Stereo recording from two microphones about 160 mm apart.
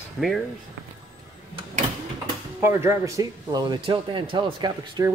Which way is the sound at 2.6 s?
15° right (ahead or behind).